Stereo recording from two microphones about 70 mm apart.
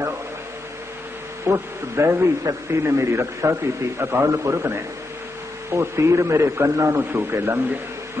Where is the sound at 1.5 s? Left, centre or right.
Right.